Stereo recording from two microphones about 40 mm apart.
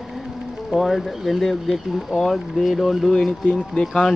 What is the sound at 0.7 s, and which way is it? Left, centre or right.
Speech, centre.